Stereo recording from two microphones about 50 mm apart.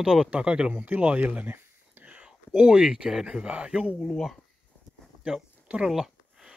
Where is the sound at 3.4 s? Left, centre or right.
Right.